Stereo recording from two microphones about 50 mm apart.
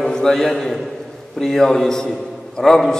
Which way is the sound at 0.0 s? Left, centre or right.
Centre.